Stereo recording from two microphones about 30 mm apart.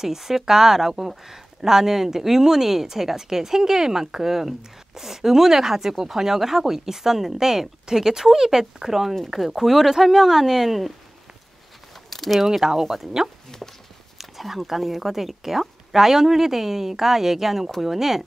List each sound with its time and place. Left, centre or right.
0.0 s speech: centre
12.1 s a sound: centre
12.4 s speech: centre
13.6 s walk: centre
14.1 s speech: centre